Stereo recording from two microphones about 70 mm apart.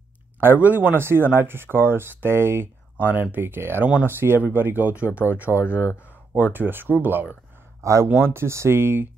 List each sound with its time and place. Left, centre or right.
0.4 s speech: right
7.8 s speech: right
8.1 s speech: right